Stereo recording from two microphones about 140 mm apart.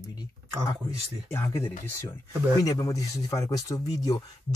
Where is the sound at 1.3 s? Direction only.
20° left (ahead or behind).